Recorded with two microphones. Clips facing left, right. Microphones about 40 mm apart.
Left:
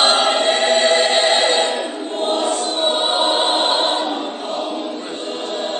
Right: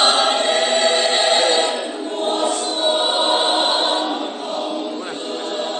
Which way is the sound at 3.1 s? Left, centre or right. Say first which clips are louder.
Even; left.